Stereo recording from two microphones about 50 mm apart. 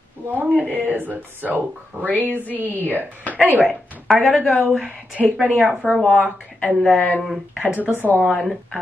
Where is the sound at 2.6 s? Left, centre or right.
Right.